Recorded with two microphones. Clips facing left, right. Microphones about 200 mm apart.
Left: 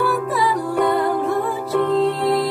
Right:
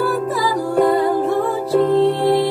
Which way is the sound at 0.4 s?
Centre (ahead or behind).